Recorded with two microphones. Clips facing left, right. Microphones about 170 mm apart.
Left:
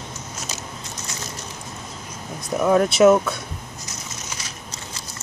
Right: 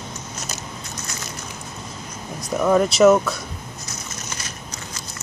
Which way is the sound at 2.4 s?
Centre (ahead or behind).